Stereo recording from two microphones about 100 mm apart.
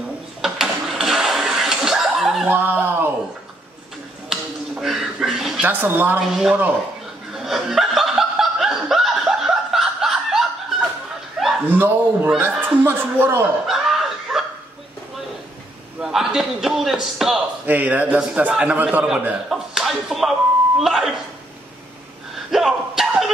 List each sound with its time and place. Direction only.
0.4 s a sound: 5° right (ahead or behind)
2.4 s snicker: 20° right (ahead or behind)
4.3 s finger snapping: 5° right (ahead or behind)
5.7 s speech: 20° right (ahead or behind)
7.3 s snicker: 5° right (ahead or behind)
11.6 s speech: 20° right (ahead or behind)
13.7 s a sound: 5° right (ahead or behind)
16.0 s a man's voice: 5° right (ahead or behind)
17.6 s a man's voice: 15° right (ahead or behind)
22.5 s a sound: centre (ahead or behind)